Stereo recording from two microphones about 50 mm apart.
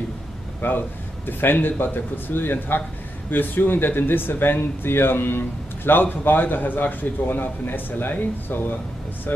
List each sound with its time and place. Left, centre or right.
0.6 s a man's voice: left